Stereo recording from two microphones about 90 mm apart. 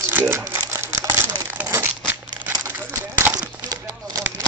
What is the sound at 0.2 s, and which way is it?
Crumpling, 25° right (ahead or behind).